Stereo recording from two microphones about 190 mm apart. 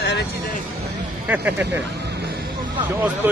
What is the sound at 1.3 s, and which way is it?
Speech, 10° right (ahead or behind).